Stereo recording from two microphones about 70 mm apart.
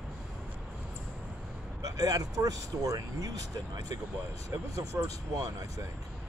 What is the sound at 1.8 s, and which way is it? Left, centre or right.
Speech, right.